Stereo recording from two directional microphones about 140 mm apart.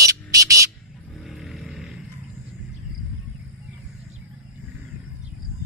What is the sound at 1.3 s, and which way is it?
Vehicle, centre (ahead or behind).